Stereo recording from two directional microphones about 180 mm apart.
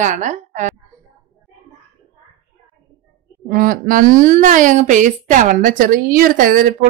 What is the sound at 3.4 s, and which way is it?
A woman's voice, 50° right (ahead or behind).